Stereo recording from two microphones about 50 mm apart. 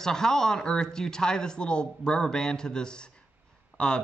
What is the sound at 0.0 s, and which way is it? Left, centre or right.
Speech, centre.